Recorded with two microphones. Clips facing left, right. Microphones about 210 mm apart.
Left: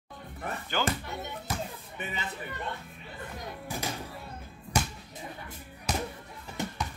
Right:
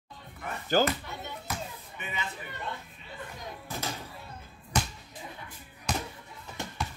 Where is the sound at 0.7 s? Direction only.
40° right (ahead or behind).